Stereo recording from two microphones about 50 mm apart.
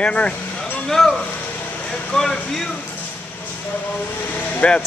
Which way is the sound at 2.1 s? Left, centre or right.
Centre.